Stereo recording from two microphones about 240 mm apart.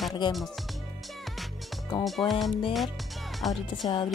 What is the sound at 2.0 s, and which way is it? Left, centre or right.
Speech, centre.